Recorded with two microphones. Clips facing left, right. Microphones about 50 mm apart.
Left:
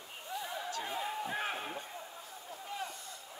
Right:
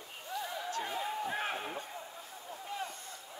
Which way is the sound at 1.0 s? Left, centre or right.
Centre.